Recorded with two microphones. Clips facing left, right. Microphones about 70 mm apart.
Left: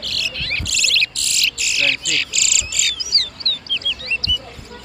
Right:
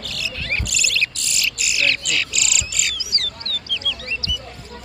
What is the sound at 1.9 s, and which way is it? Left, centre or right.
Bird, centre.